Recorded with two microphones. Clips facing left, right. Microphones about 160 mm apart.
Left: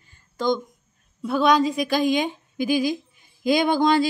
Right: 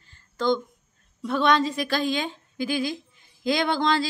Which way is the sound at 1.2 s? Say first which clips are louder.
Left 3 dB; 10° left (ahead or behind).